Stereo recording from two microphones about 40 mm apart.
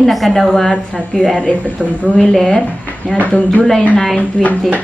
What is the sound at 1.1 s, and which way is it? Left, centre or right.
Speech, left.